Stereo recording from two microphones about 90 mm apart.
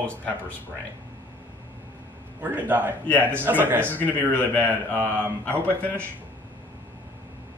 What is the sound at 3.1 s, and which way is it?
Speech, 20° left (ahead or behind).